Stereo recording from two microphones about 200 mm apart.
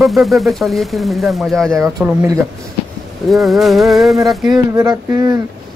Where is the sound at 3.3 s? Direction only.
Centre (ahead or behind).